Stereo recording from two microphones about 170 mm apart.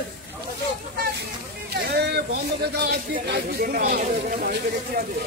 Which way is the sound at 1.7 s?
70° right (ahead or behind).